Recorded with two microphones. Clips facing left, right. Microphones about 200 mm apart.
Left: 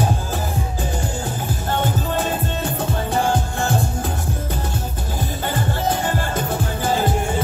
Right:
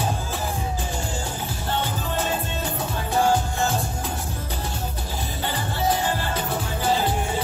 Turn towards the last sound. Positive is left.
turn(degrees=50)  # may be behind; listen again after turning